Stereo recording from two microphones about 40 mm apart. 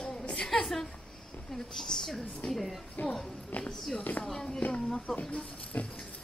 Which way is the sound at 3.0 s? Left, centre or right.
Left.